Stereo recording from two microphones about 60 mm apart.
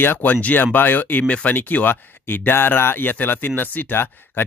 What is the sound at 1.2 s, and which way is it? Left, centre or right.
Speech, left.